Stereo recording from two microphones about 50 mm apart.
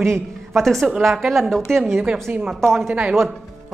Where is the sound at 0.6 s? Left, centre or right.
Centre.